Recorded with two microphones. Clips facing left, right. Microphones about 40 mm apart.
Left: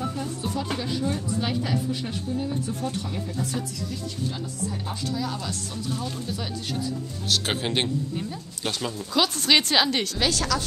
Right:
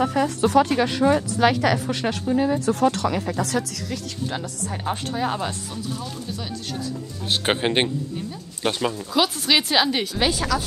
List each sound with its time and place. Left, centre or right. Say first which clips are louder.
0.0 s a woman's voice: right 9 dB; right
4.8 s speech: right 8 dB; right
7.2 s a man's voice: right 4 dB; right
9.1 s a woman's voice: even; centre